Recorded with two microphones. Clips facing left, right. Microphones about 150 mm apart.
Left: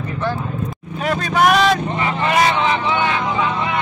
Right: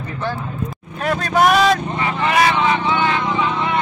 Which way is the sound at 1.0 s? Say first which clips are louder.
Even; centre (ahead or behind).